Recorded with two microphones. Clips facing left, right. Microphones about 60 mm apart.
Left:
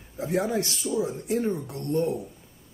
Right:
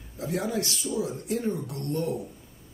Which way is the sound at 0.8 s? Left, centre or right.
Centre.